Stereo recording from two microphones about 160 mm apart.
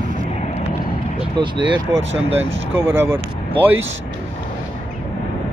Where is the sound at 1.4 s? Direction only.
30° right (ahead or behind).